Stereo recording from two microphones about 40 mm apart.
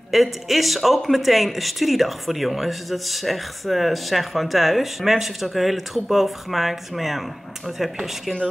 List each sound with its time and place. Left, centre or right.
0.1 s speech: centre